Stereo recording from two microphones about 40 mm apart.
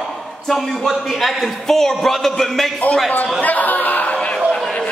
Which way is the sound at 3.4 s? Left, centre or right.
Left.